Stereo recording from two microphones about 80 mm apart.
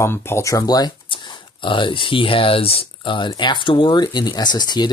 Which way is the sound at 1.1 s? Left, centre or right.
Left.